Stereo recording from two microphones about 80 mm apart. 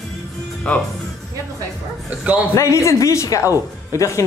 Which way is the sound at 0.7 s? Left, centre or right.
Centre.